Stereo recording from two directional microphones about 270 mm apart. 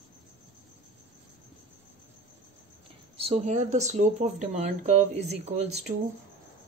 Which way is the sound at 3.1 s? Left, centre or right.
Right.